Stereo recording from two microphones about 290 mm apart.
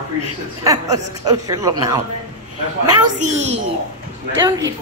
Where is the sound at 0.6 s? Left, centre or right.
Centre.